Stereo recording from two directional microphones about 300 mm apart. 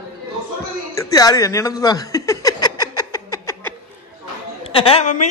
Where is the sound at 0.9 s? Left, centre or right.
Centre.